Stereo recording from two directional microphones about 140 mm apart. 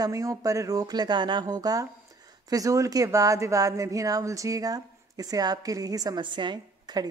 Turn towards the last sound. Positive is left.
turn(degrees=-30)  # may be behind; listen again after turning